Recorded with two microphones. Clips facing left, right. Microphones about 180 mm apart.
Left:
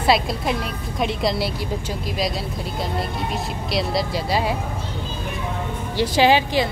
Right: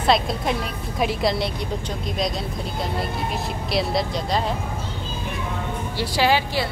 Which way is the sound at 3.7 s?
Centre (ahead or behind).